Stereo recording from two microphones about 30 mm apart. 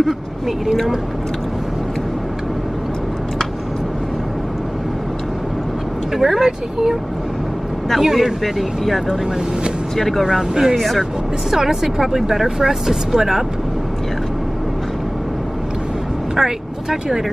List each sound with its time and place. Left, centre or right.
6.1 s speech: centre
8.0 s speech: centre
8.8 s speech: centre
10.5 s speech: centre
16.3 s speech: centre